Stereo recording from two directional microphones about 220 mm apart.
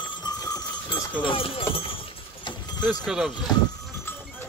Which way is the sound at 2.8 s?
5° right (ahead or behind).